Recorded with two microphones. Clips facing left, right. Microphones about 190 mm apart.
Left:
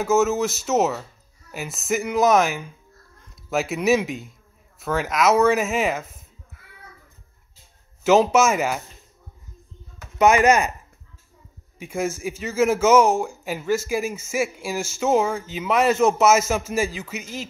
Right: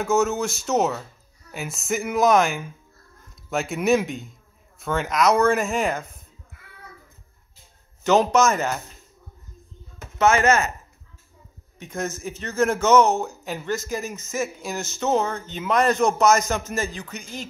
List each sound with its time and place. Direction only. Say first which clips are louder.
0.0 s speech: left 2 dB; 5° left (ahead or behind)
8.0 s speech: left 2 dB; 5° left (ahead or behind)
10.1 s speech: left 2 dB; 15° left (ahead or behind)
11.8 s speech: left 4 dB; 10° left (ahead or behind)